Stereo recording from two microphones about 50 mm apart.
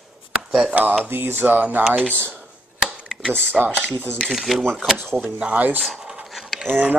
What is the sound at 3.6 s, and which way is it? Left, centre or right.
Speech, centre.